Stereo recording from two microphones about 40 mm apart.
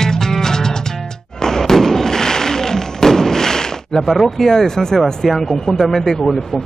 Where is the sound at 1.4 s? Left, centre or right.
Centre.